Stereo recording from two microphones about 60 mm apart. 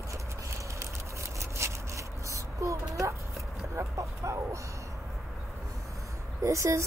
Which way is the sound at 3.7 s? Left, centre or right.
Right.